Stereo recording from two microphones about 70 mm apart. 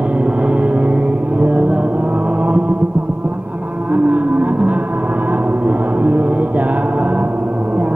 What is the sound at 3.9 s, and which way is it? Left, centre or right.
Vehicle, right.